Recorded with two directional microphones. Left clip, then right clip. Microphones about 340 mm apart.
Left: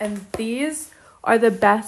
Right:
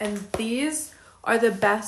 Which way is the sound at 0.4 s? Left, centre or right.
Centre.